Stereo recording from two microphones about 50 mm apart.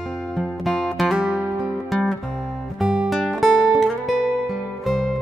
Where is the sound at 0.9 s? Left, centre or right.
Centre.